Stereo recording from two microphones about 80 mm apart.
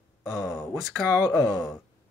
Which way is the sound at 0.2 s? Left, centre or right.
Centre.